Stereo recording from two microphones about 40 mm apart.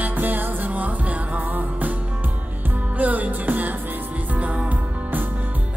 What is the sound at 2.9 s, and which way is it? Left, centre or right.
Music, right.